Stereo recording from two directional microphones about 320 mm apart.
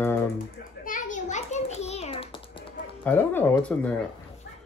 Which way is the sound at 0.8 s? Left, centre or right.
Left.